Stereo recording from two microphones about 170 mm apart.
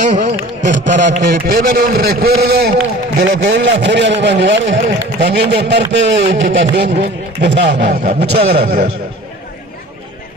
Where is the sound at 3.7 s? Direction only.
90° right.